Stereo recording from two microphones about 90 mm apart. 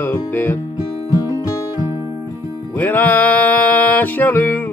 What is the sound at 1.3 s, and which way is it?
Music, 35° left (ahead or behind).